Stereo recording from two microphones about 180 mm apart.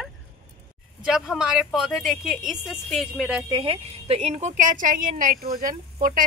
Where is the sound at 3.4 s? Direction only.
30° right (ahead or behind).